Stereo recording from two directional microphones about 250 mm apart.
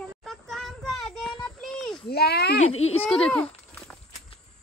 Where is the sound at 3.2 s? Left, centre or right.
Centre.